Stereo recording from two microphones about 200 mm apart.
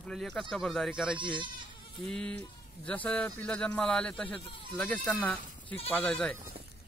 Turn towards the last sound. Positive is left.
turn(degrees=5)  # may be behind; listen again after turning